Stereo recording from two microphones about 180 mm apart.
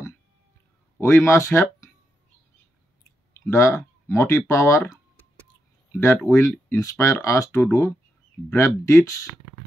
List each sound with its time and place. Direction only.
0.9 s speech: 10° left (ahead or behind)
3.4 s speech: 15° left (ahead or behind)
7.6 s speech: 5° left (ahead or behind)